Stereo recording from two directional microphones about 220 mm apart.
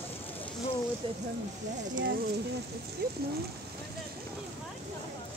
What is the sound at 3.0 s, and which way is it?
Speech, 45° right (ahead or behind).